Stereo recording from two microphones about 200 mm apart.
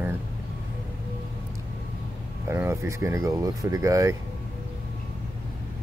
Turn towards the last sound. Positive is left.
turn(degrees=-15)  # may be behind; listen again after turning